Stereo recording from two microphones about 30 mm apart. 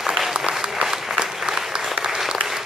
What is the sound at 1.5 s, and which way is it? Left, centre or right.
Applause, right.